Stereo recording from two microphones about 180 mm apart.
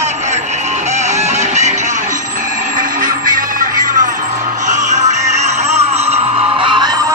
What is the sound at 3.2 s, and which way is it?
Music, 50° right (ahead or behind).